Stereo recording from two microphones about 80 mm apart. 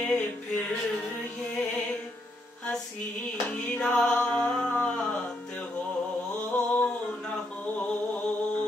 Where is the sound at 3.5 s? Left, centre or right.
Centre.